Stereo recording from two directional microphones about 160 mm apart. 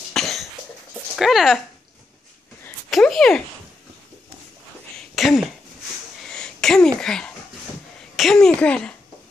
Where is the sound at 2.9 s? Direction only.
Centre (ahead or behind).